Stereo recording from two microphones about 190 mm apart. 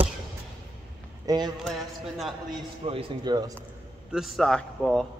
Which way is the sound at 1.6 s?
Centre (ahead or behind).